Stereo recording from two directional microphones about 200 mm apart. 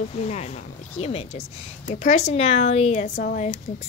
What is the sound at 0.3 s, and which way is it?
Speech, 35° left (ahead or behind).